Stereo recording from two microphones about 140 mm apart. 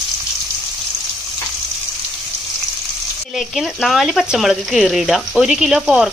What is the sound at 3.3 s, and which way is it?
Speech, centre (ahead or behind).